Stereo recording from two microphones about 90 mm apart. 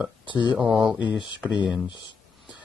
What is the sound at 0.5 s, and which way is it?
Speech, 5° right (ahead or behind).